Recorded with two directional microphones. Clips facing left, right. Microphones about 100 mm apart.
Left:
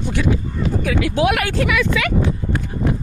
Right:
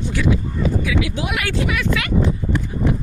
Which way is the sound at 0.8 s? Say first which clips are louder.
Left 5 dB; 50° left (ahead or behind).